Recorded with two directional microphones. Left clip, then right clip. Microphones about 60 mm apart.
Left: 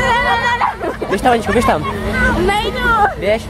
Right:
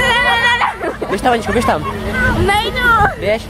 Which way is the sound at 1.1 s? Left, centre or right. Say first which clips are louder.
Left 1 dB; centre.